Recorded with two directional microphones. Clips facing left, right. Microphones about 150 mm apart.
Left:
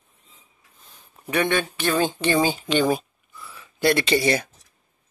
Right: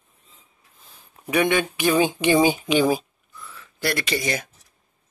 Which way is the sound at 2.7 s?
Centre (ahead or behind).